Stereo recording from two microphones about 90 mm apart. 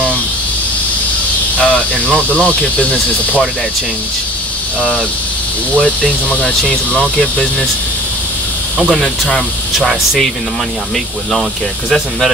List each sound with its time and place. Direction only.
1.6 s cricket: 10° left (ahead or behind)
5.8 s cricket: 15° left (ahead or behind)
8.8 s speech: 5° right (ahead or behind)